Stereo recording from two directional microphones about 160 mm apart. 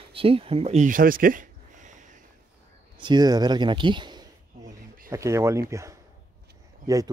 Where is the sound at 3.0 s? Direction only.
25° right (ahead or behind).